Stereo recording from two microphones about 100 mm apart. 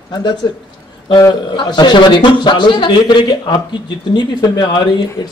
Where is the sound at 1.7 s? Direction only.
50° left (ahead or behind).